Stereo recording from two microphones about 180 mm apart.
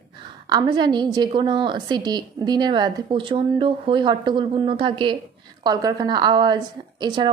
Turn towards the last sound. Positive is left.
turn(degrees=-25)  # may be behind; listen again after turning